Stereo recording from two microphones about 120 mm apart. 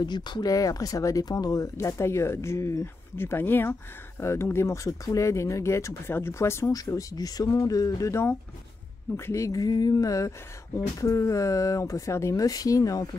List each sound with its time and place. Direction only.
0.0 s speech: 40° left (ahead or behind)